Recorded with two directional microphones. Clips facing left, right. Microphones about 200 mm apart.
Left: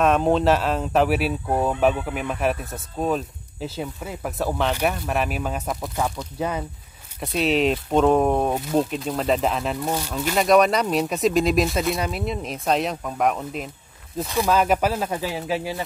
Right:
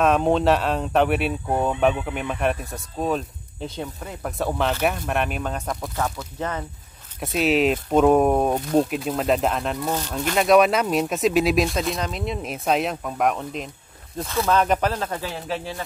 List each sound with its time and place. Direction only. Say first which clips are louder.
0.0 s speech: even; centre (ahead or behind)
7.2 s speech: right 1 dB; centre (ahead or behind)
14.2 s speech: even; 15° left (ahead or behind)